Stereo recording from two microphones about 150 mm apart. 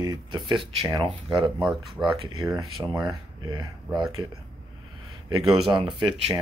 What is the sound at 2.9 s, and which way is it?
Speech, 25° right (ahead or behind).